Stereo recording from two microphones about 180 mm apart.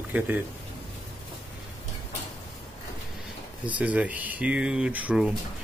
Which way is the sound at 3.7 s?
10° right (ahead or behind).